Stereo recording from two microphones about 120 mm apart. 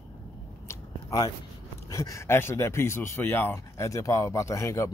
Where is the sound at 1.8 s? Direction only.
30° left (ahead or behind).